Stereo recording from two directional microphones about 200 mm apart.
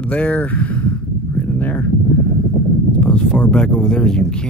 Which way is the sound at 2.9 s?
5° left (ahead or behind).